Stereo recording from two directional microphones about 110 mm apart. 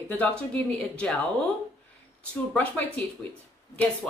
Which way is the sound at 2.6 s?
15° left (ahead or behind).